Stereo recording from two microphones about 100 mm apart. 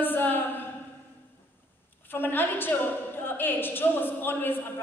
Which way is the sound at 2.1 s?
20° left (ahead or behind).